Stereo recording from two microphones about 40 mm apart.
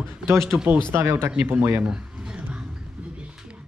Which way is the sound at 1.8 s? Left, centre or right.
Centre.